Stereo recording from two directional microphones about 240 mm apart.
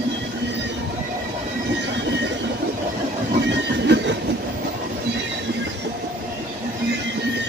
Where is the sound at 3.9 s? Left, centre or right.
Right.